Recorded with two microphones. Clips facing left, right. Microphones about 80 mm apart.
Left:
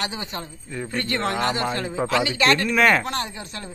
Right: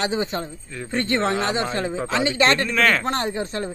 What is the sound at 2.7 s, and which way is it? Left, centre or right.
Speech, centre.